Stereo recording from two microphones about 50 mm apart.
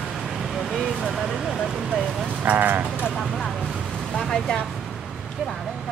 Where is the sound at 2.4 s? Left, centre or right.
Right.